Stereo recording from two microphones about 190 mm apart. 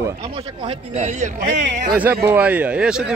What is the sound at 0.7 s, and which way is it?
Speech, 40° right (ahead or behind).